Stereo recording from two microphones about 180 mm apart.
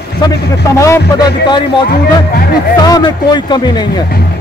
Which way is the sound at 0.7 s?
15° left (ahead or behind).